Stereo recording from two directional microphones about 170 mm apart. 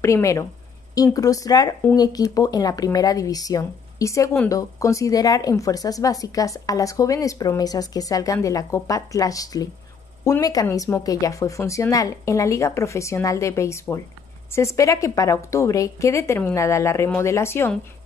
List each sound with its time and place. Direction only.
0.0 s a woman's voice: 20° left (ahead or behind)